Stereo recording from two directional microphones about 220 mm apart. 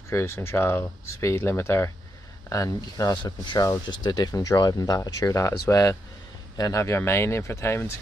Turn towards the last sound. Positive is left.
turn(degrees=10)  # may be behind; listen again after turning